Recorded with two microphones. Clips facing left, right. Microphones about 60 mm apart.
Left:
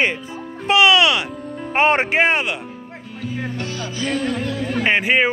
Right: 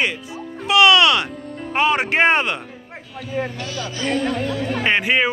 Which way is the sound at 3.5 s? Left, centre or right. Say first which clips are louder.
Left 1 dB; left.